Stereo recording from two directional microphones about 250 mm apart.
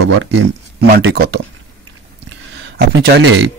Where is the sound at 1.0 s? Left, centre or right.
Right.